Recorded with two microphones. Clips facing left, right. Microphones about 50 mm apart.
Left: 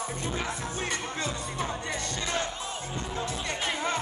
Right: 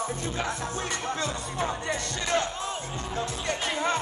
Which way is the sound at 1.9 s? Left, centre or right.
Right.